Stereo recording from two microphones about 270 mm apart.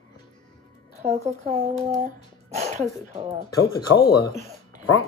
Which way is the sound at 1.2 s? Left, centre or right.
Right.